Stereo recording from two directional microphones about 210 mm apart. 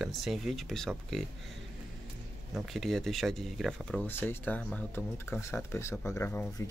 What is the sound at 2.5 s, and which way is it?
Speech, centre (ahead or behind).